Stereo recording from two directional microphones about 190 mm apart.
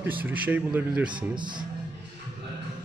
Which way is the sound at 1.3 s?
25° right (ahead or behind).